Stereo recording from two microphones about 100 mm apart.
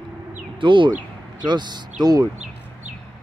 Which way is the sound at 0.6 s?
55° right (ahead or behind).